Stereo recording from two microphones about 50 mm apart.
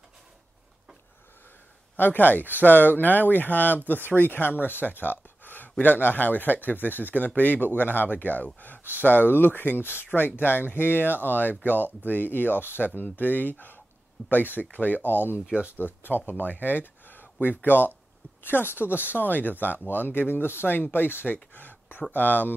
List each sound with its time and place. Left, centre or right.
2.0 s speech: left